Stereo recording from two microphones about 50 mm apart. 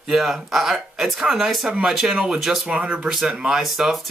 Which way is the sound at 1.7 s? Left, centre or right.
Centre.